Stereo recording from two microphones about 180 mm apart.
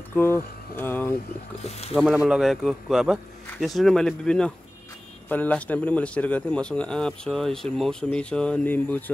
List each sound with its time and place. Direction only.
0.1 s a sound: 10° left (ahead or behind)
1.6 s speech: 35° left (ahead or behind)
2.0 s a man's voice: 5° right (ahead or behind)